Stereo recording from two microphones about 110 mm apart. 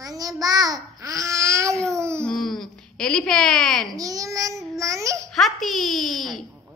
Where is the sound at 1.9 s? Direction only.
25° right (ahead or behind).